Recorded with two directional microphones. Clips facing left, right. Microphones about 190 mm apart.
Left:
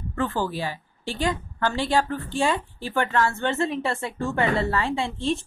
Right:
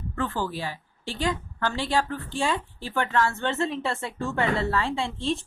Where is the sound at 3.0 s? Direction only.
5° left (ahead or behind).